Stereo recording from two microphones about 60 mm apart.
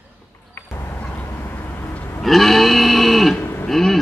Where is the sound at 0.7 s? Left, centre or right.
Left.